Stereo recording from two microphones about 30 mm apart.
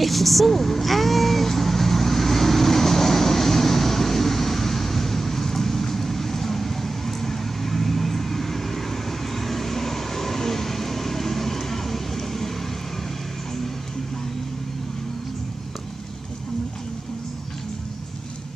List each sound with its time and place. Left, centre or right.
0.0 s vehicle: centre